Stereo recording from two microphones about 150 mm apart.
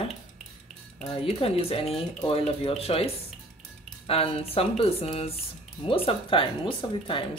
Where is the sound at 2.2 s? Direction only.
40° left (ahead or behind).